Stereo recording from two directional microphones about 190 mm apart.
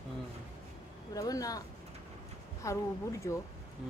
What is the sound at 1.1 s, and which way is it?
Speech, 20° left (ahead or behind).